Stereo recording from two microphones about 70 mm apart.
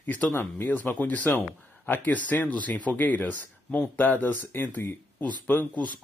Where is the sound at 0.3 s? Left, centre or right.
Left.